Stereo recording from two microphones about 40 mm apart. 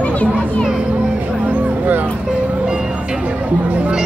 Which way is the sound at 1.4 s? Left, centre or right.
Right.